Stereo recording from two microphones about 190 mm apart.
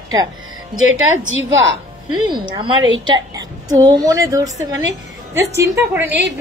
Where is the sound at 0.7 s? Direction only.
90° right.